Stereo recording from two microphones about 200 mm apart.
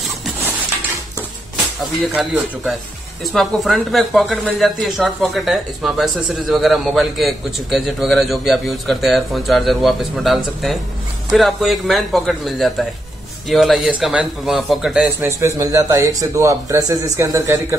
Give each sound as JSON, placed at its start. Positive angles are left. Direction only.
{"t": 1.8, "sound": "speech", "side_deg": -5}
{"t": 15.1, "sound": "speech", "side_deg": -15}